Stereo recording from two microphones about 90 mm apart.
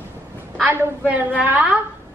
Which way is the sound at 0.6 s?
20° right (ahead or behind).